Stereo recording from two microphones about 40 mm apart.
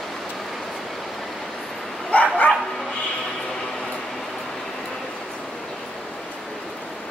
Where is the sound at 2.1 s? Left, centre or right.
Left.